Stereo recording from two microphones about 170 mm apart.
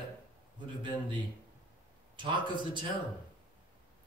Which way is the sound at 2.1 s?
30° right (ahead or behind).